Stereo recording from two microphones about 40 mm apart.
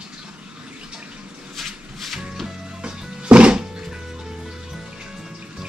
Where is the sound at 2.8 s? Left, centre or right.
Right.